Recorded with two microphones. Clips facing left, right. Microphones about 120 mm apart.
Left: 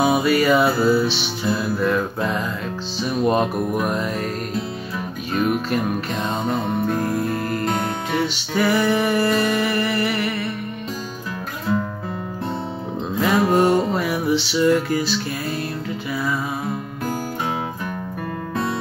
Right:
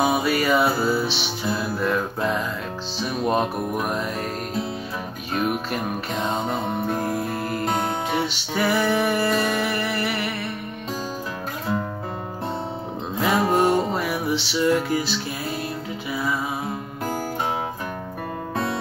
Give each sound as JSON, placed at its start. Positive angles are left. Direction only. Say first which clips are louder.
{"t": 0.0, "sound": "music", "louder": "left 4 dB", "side_deg": 0}
{"t": 5.3, "sound": "music", "louder": "left 4 dB", "side_deg": -5}
{"t": 13.2, "sound": "music", "louder": "left 2 dB", "side_deg": -5}
{"t": 18.5, "sound": "music", "louder": "left 2 dB", "side_deg": -35}